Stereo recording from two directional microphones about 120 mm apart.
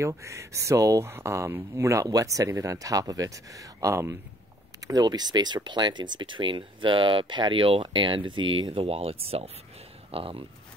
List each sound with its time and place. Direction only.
0.0 s speech: 25° right (ahead or behind); by 10.4 s 50° right (ahead or behind)